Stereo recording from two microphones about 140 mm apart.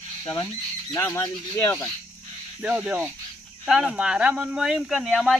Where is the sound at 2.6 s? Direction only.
10° right (ahead or behind).